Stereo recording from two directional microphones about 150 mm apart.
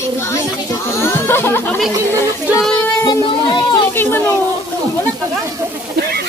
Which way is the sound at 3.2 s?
30° left (ahead or behind).